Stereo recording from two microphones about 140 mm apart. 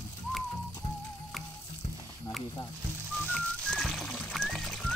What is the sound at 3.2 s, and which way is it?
Music, centre (ahead or behind).